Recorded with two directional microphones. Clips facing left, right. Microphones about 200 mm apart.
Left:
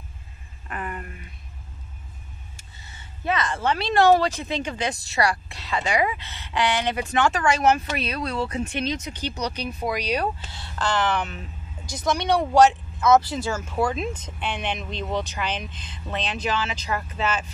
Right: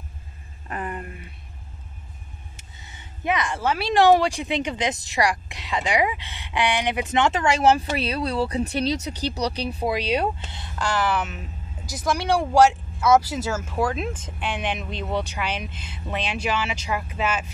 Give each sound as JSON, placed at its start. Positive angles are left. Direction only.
{"t": 0.7, "sound": "a sound", "side_deg": -35}
{"t": 2.5, "sound": "speech", "side_deg": -20}
{"t": 10.8, "sound": "a woman's voice", "side_deg": -10}